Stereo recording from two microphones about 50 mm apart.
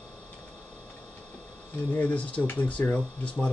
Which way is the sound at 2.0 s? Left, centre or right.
Left.